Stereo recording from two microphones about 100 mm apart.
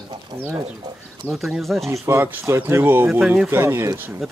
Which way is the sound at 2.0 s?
25° right (ahead or behind).